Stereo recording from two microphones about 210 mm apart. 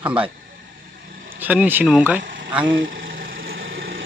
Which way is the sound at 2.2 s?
55° right (ahead or behind).